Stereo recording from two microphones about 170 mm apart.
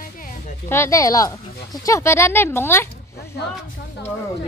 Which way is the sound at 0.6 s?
15° left (ahead or behind).